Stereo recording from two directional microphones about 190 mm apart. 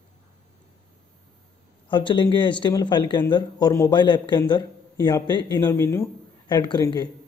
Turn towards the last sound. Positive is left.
turn(degrees=20)  # may be behind; listen again after turning